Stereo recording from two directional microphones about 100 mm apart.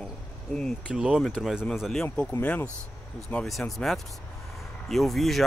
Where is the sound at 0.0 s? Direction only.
5° left (ahead or behind).